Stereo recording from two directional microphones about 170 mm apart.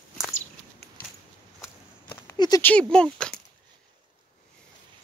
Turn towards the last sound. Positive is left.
turn(degrees=5)  # may be behind; listen again after turning